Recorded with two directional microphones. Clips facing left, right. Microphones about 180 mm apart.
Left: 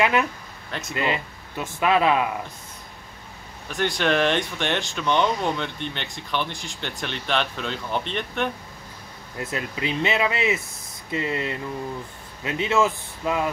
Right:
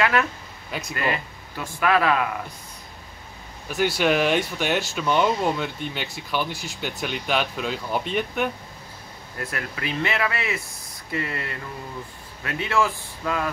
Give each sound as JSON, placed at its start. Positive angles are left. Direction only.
{"t": 0.0, "sound": "speech", "side_deg": 20}
{"t": 0.7, "sound": "speech", "side_deg": 0}
{"t": 0.9, "sound": "speech", "side_deg": 20}
{"t": 3.6, "sound": "speech", "side_deg": -5}
{"t": 9.4, "sound": "speech", "side_deg": 20}